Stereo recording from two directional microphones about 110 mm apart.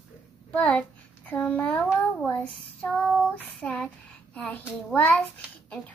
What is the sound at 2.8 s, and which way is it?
A child's voice, 5° left (ahead or behind).